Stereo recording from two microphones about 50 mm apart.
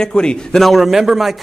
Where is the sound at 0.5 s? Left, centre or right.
Centre.